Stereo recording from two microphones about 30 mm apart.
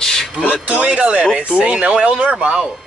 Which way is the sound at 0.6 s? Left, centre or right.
Right.